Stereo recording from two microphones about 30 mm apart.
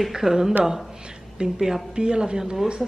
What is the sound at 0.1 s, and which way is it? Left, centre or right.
Speech, centre.